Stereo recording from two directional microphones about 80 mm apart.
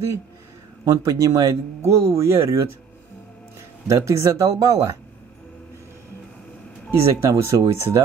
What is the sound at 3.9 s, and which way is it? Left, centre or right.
Speech, right.